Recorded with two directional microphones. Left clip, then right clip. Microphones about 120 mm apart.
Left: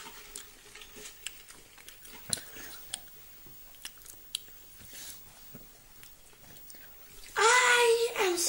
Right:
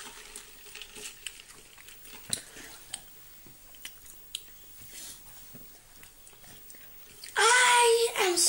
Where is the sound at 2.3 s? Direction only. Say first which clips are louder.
Right 1 dB; 20° left (ahead or behind).